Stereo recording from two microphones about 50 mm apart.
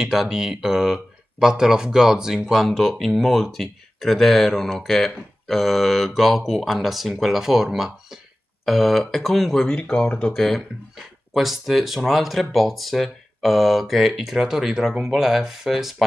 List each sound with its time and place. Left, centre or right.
0.0 s speech: centre
8.6 s speech: centre
9.8 s speech: left
10.3 s speech: centre
11.3 s speech: centre